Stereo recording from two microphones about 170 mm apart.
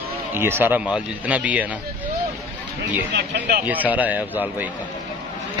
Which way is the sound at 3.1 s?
70° right (ahead or behind).